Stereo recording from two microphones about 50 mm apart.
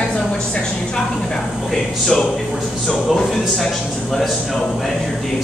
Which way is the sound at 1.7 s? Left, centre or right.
Centre.